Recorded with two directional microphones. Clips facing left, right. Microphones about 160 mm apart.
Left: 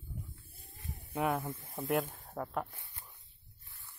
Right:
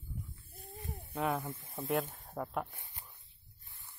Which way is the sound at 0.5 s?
60° right (ahead or behind).